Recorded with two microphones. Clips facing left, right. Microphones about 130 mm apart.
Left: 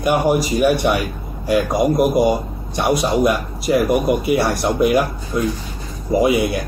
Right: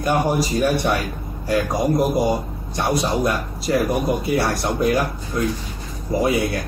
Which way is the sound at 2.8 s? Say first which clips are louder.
Left 4 dB; 15° left (ahead or behind).